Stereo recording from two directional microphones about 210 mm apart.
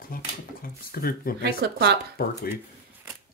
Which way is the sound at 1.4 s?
50° right (ahead or behind).